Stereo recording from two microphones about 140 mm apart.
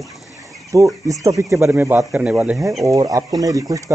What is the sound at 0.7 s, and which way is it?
Speech, 25° right (ahead or behind).